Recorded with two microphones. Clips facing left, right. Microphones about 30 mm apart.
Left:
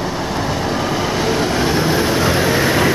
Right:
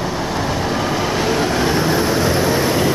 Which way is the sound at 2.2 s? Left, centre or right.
Left.